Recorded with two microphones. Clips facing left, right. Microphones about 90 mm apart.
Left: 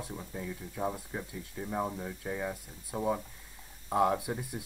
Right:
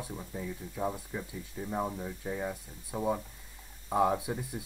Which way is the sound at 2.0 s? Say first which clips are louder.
Even; 30° left (ahead or behind).